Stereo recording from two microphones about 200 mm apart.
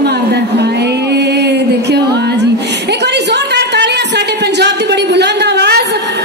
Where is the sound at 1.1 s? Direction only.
55° right (ahead or behind).